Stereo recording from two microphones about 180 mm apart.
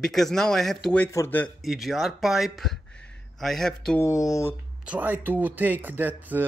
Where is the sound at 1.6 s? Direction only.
Centre (ahead or behind).